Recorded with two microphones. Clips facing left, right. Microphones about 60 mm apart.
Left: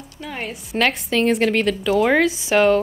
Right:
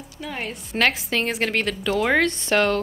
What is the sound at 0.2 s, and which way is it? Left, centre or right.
A woman's voice, centre.